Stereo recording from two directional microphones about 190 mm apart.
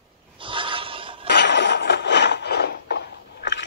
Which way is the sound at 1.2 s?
70° left (ahead or behind).